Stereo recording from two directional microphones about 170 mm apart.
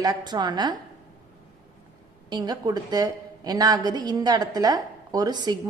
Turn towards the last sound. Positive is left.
turn(degrees=-25)  # may be behind; listen again after turning